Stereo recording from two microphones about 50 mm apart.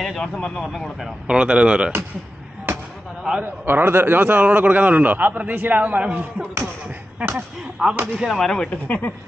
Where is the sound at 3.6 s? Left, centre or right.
Right.